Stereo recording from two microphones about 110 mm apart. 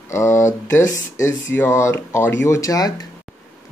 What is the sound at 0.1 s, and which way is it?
Speech, 25° left (ahead or behind).